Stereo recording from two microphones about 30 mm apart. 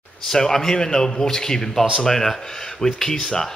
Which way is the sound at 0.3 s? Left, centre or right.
Centre.